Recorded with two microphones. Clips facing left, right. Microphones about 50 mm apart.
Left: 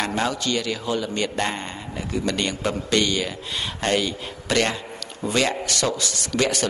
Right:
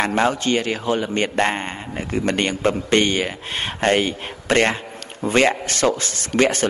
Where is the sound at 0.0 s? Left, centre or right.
Right.